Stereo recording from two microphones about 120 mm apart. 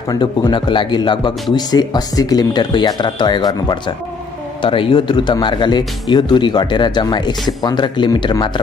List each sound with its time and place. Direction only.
0.1 s speech: 40° left (ahead or behind)